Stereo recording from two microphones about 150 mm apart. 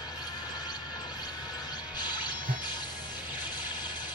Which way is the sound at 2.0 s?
30° left (ahead or behind).